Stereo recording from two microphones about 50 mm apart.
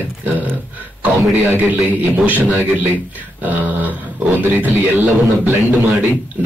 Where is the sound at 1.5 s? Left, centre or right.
Right.